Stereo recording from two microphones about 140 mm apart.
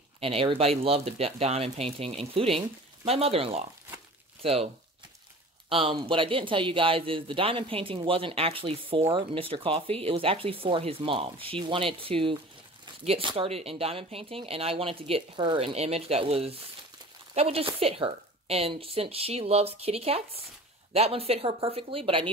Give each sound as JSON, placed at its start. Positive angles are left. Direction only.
{"t": 0.2, "sound": "speech", "side_deg": -40}
{"t": 5.7, "sound": "speech", "side_deg": -40}